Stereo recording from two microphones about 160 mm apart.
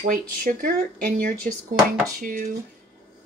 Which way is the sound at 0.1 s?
60° right (ahead or behind).